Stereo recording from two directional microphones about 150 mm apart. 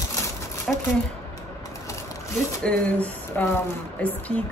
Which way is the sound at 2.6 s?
10° left (ahead or behind).